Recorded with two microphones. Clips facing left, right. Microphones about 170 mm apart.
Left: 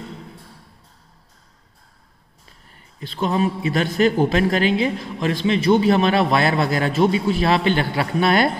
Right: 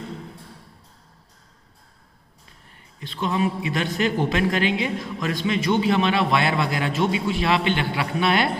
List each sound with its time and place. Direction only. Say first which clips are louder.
3.0 s a man's voice: left 3 dB; 35° left (ahead or behind)